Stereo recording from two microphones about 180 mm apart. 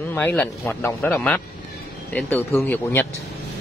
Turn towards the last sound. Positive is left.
turn(degrees=10)  # may be behind; listen again after turning